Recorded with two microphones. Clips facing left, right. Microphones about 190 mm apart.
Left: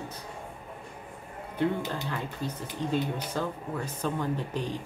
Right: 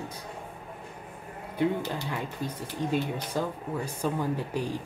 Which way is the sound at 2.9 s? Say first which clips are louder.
Even; 10° right (ahead or behind).